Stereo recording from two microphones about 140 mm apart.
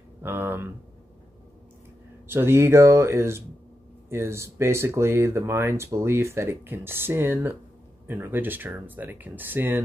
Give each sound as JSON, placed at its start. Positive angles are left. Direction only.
{"t": 0.2, "sound": "speech", "side_deg": -15}
{"t": 2.2, "sound": "speech", "side_deg": -15}